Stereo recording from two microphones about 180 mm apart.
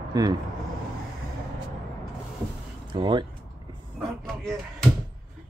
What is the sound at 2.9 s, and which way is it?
Speech, 25° right (ahead or behind).